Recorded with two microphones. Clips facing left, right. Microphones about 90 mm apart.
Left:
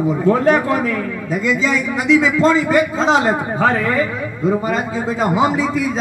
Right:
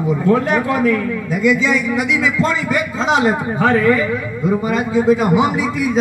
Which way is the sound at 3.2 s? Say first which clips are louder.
Right 1 dB; 30° left (ahead or behind).